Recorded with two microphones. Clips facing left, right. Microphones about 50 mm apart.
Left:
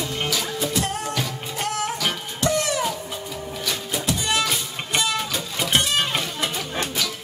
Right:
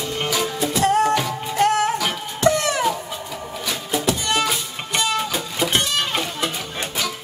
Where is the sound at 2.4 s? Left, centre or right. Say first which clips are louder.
Right 4 dB; right.